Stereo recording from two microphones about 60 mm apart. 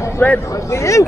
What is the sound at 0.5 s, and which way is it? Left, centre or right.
Speech, left.